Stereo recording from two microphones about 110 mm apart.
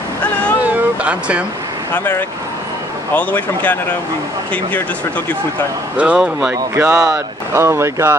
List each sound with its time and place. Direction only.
0.7 s a sound: 10° right (ahead or behind)
3.2 s speech: 15° left (ahead or behind)
5.9 s speech: 5° right (ahead or behind)
6.5 s speech: 25° right (ahead or behind)